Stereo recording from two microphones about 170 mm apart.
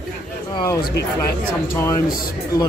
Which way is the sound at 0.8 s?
65° left (ahead or behind).